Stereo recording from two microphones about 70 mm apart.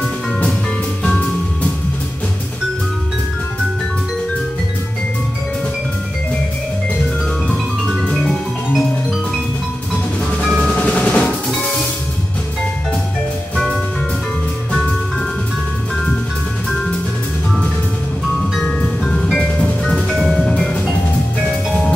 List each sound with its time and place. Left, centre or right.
1.0 s music: centre
8.1 s music: centre
10.4 s percussion: centre
10.8 s percussion: centre
18.8 s music: centre
19.8 s music: centre